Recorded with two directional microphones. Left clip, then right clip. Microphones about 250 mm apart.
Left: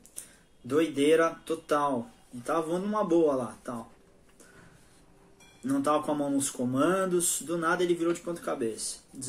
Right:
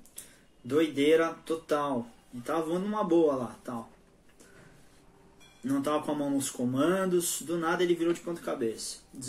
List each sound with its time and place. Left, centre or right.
0.7 s speech: centre
5.6 s speech: centre